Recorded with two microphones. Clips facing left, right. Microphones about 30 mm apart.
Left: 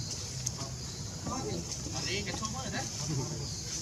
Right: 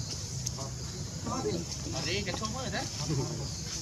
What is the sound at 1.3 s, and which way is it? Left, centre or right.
Vehicle, centre.